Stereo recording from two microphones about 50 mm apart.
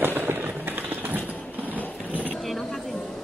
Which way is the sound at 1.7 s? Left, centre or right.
Left.